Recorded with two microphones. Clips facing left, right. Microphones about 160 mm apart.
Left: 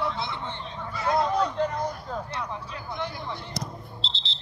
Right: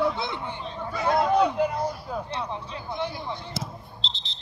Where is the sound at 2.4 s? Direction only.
25° right (ahead or behind).